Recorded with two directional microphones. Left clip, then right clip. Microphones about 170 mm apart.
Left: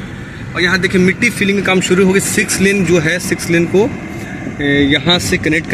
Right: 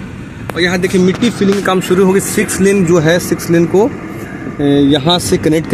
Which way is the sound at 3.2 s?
30° right (ahead or behind).